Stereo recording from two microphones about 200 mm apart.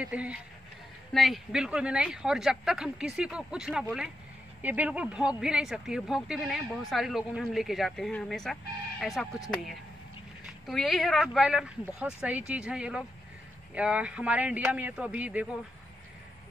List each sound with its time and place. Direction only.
0.0 s a man's voice: 5° right (ahead or behind)